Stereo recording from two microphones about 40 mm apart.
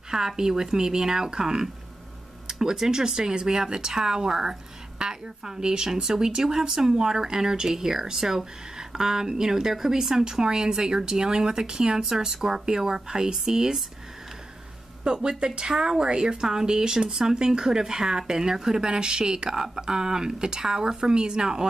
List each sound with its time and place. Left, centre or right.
0.4 s speech: centre
15.2 s speech: right